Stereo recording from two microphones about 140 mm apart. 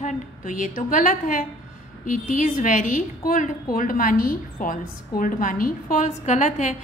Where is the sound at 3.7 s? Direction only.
80° left.